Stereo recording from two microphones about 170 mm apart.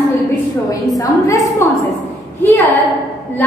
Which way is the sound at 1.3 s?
20° left (ahead or behind).